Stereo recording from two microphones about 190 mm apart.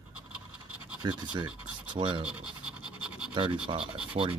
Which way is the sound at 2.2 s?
5° right (ahead or behind).